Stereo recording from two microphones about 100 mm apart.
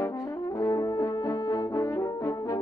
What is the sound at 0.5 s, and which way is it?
Brass instrument, 35° left (ahead or behind).